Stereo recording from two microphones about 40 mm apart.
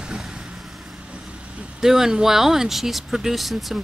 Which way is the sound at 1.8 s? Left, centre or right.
Centre.